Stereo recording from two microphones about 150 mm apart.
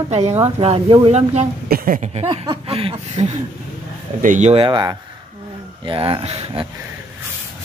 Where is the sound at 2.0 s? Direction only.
45° right (ahead or behind).